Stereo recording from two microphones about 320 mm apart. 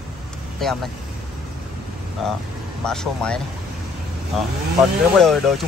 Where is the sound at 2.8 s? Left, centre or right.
Centre.